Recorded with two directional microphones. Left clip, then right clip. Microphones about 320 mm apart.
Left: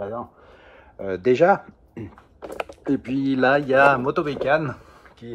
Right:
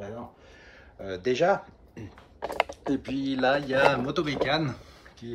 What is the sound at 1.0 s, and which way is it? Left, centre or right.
Speech, centre.